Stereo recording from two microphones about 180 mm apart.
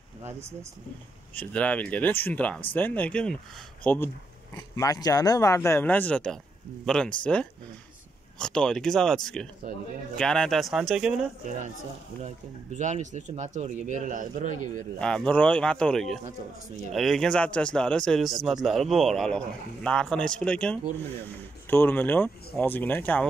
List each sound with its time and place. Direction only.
1.3 s speech: 5° left (ahead or behind)
8.4 s speech: 5° left (ahead or behind)
11.4 s speech: 40° right (ahead or behind)
12.7 s speech: 40° right (ahead or behind)
15.0 s speech: 5° left (ahead or behind)